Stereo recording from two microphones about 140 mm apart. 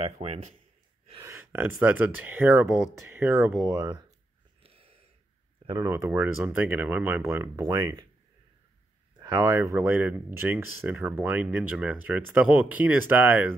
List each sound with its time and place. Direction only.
0.0 s speech: 50° right (ahead or behind)
1.2 s speech: 15° right (ahead or behind)
4.6 s a sound: 45° right (ahead or behind)
5.9 s speech: 15° right (ahead or behind)
9.1 s speech: 30° right (ahead or behind); by 13.6 s 10° right (ahead or behind)